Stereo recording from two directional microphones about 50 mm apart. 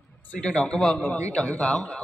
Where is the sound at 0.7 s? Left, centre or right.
Centre.